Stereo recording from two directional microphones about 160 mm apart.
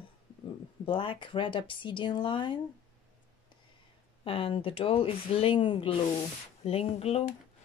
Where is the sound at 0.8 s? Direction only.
30° left (ahead or behind).